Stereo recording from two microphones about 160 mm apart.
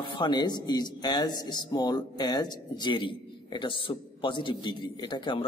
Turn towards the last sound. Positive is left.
turn(degrees=30)  # may be behind; listen again after turning